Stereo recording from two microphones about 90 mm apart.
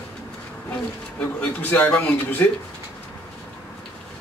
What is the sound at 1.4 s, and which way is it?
Speech, 15° left (ahead or behind).